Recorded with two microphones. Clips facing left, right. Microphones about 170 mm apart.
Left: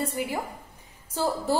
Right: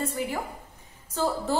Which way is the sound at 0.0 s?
10° left (ahead or behind).